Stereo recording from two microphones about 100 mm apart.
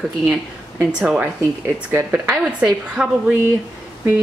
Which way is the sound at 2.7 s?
5° right (ahead or behind).